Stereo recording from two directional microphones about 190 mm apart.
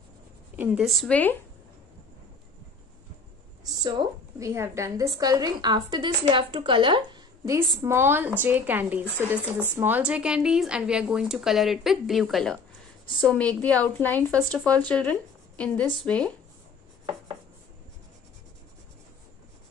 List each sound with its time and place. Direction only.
0.6 s speech: 5° right (ahead or behind)
3.6 s a woman's voice: 20° right (ahead or behind); by 16.3 s 5° left (ahead or behind)